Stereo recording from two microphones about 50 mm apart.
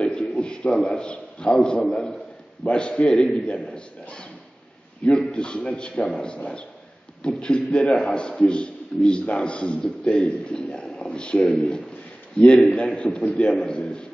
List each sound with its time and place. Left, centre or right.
0.0 s a sound: centre
0.9 s a man's voice: centre
5.0 s a man's voice: centre